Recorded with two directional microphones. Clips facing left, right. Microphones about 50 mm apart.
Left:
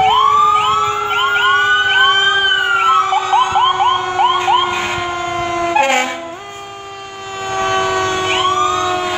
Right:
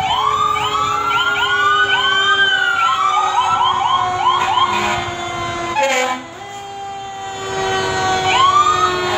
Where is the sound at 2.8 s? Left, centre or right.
Left.